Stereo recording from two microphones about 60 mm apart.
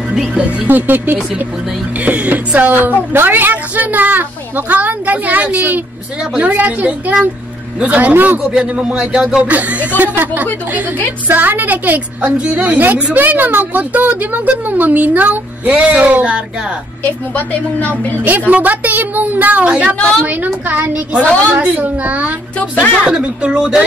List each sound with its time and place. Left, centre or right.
0.7 s a woman's voice: right
8.5 s speech: centre
9.5 s a woman's voice: right
12.3 s a woman's voice: centre
17.0 s a woman's voice: left
18.5 s a woman's voice: right
23.0 s speech: centre